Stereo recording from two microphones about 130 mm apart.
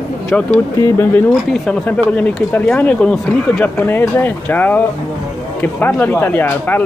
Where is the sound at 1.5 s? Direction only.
5° left (ahead or behind).